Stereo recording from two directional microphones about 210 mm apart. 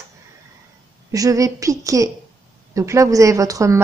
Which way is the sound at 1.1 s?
15° right (ahead or behind).